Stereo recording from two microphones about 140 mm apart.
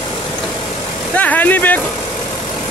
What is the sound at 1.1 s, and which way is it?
Vehicle, 10° left (ahead or behind).